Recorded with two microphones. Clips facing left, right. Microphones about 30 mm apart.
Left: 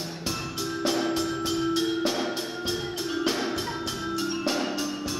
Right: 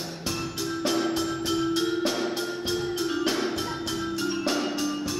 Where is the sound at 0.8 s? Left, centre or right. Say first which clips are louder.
Even; centre.